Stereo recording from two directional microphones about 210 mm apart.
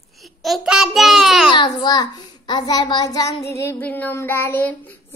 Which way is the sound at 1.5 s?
20° left (ahead or behind).